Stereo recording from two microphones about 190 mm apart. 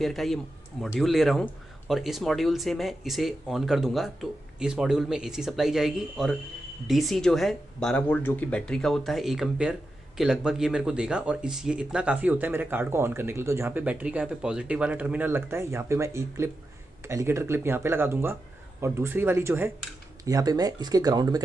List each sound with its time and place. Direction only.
0.0 s speech: centre (ahead or behind); by 21.4 s 20° right (ahead or behind)